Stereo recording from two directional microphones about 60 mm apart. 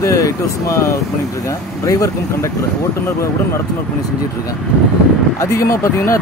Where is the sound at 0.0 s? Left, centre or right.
Left.